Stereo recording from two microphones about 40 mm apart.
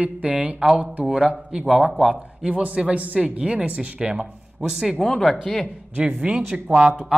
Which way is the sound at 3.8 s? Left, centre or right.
Right.